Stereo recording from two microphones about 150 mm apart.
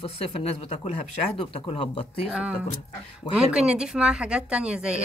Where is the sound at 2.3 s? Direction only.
10° right (ahead or behind).